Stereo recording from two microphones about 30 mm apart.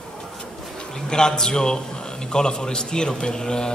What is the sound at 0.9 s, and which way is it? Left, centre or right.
A man's voice, left.